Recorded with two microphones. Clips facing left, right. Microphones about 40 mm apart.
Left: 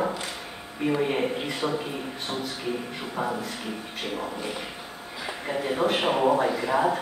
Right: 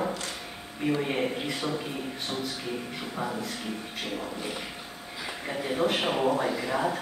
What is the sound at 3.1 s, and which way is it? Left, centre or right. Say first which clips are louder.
Speech: left 4 dB; centre.